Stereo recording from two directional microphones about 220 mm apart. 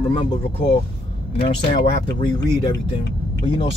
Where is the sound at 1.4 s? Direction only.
20° left (ahead or behind).